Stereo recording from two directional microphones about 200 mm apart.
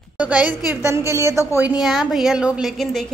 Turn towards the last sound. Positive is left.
turn(degrees=0)  # may be behind; listen again after turning